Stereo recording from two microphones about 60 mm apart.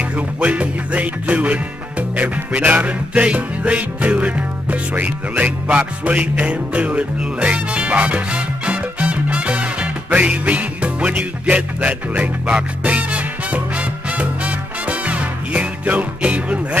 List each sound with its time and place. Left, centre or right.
0.1 s music: right